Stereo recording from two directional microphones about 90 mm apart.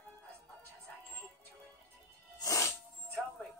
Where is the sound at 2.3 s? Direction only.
40° left (ahead or behind).